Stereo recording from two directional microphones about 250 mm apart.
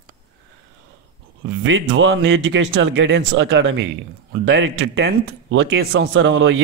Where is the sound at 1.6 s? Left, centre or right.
Right.